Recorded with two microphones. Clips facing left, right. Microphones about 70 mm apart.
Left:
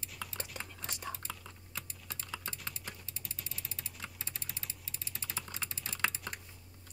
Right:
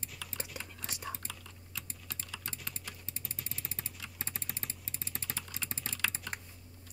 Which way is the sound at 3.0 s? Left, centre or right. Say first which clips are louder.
Right 2 dB; right.